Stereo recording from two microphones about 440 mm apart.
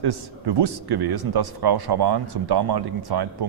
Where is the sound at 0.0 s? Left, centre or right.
Right.